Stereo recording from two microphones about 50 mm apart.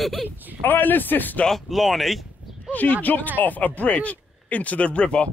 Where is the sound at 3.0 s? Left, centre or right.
Left.